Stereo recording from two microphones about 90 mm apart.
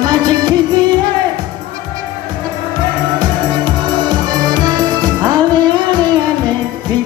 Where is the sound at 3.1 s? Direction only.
60° right (ahead or behind).